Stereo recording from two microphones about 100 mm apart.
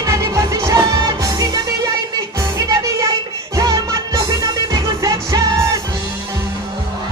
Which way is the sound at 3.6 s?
40° right (ahead or behind).